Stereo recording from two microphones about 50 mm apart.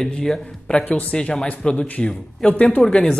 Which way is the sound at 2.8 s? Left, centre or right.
Centre.